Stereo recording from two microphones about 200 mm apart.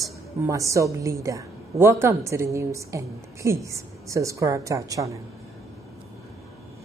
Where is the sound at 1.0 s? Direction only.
15° right (ahead or behind).